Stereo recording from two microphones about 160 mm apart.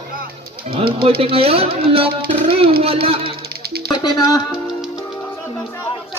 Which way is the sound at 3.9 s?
25° left (ahead or behind).